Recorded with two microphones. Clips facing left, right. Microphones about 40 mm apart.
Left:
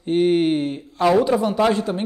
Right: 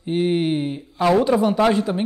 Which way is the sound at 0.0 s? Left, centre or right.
Centre.